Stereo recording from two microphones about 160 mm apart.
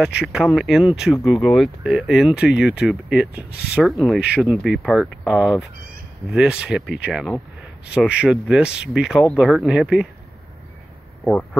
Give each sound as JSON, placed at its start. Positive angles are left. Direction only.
{"t": 0.0, "sound": "speech", "side_deg": -5}